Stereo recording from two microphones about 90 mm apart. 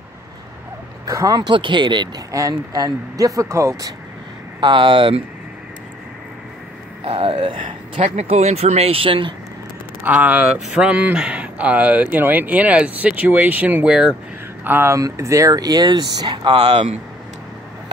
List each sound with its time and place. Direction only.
1.0 s speech: 40° right (ahead or behind)
1.5 s speech: 65° right (ahead or behind)
2.3 s speech: 40° right (ahead or behind)
4.6 s speech: 60° right (ahead or behind)
7.1 s speech: 90° right; by 8.4 s 70° right (ahead or behind)
8.8 s speech: 85° right
10.0 s speech: 15° right (ahead or behind)
15.0 s speech: 40° right (ahead or behind)